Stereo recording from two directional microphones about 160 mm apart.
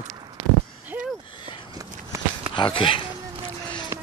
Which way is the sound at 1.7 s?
20° right (ahead or behind).